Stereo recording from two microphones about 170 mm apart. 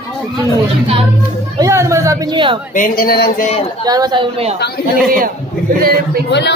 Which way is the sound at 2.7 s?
55° left (ahead or behind).